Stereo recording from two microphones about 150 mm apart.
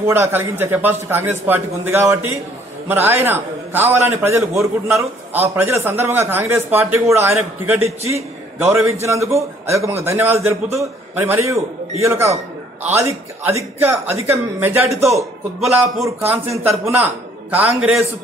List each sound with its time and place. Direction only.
0.0 s a man's voice: 15° right (ahead or behind)
15.6 s a man's voice: centre (ahead or behind)
16.1 s speech: 15° right (ahead or behind)